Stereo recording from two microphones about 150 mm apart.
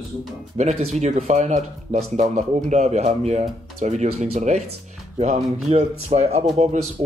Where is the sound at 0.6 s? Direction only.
50° right (ahead or behind).